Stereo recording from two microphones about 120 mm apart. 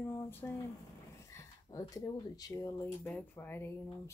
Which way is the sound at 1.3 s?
30° left (ahead or behind).